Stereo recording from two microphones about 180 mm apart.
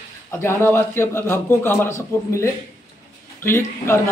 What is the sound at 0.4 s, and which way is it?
Speech, 15° left (ahead or behind).